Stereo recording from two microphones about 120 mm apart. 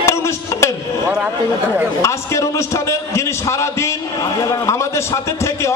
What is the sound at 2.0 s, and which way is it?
A man's voice, 25° left (ahead or behind).